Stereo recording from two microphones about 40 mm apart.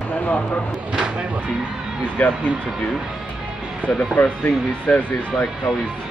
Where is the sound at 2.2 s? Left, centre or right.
Left.